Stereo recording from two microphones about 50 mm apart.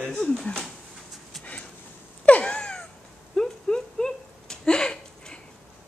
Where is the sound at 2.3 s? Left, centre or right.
Left.